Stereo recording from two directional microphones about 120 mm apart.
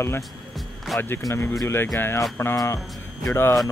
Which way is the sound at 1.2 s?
25° left (ahead or behind).